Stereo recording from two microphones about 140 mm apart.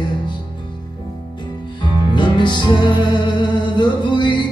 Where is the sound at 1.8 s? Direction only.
35° left (ahead or behind).